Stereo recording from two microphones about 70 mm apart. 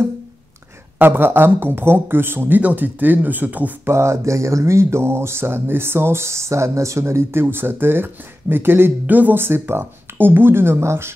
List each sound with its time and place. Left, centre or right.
0.9 s speech: right
3.9 s speech: right